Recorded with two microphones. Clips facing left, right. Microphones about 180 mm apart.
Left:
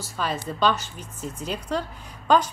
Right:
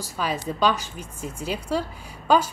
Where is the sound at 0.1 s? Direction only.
10° right (ahead or behind).